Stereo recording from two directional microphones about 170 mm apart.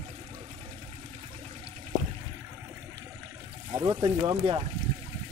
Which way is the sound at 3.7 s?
25° right (ahead or behind).